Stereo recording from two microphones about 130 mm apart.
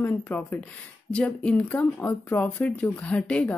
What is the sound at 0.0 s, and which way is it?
Speech, 15° left (ahead or behind).